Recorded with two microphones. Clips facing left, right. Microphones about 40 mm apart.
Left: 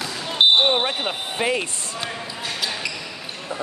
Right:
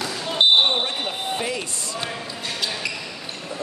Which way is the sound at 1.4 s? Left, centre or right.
Left.